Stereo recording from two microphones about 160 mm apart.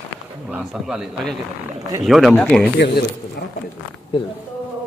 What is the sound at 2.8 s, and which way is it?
Speech, 90° left.